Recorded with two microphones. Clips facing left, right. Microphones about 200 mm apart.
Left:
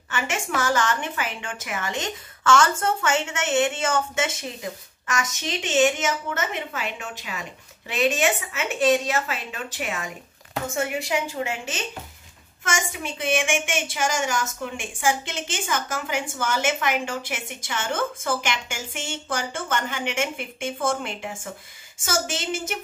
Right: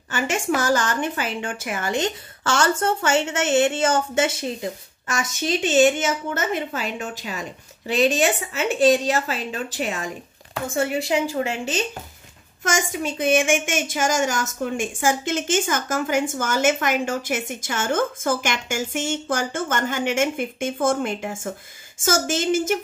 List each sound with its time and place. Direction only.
0.7 s a woman's voice: 35° right (ahead or behind)